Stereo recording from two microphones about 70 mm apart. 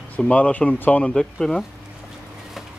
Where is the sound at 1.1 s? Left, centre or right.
Centre.